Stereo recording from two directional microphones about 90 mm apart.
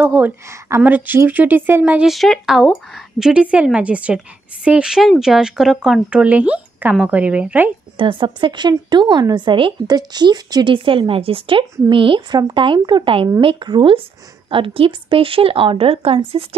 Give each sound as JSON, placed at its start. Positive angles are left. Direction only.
{"t": 0.0, "sound": "speech", "side_deg": -20}
{"t": 0.5, "sound": "speech", "side_deg": -30}
{"t": 0.8, "sound": "speech", "side_deg": -20}
{"t": 2.0, "sound": "speech", "side_deg": 0}
{"t": 8.0, "sound": "speech", "side_deg": -65}
{"t": 9.8, "sound": "speech", "side_deg": -50}
{"t": 10.7, "sound": "speech", "side_deg": -75}
{"t": 14.5, "sound": "a woman's voice", "side_deg": -80}